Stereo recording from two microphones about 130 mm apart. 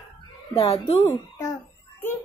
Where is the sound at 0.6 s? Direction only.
50° left (ahead or behind).